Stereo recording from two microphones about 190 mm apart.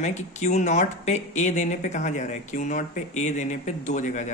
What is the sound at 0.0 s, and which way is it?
Speech, 35° left (ahead or behind).